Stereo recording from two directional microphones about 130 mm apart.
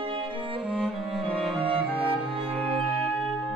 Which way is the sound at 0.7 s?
Centre (ahead or behind).